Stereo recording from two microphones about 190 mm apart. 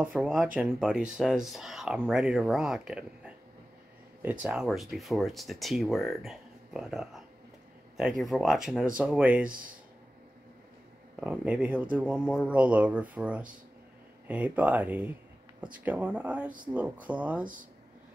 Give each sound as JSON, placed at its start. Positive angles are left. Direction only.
{"t": 0.0, "sound": "speech", "side_deg": 0}
{"t": 9.5, "sound": "speech", "side_deg": -45}
{"t": 11.1, "sound": "speech", "side_deg": -5}